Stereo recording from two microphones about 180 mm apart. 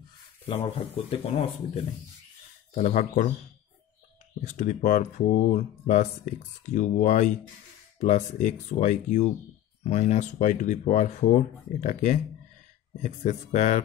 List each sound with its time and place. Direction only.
0.5 s speech: 35° left (ahead or behind)
2.7 s speech: 45° left (ahead or behind)
4.4 s speech: 40° left (ahead or behind)